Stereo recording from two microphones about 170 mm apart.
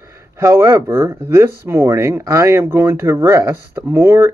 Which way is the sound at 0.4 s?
15° right (ahead or behind).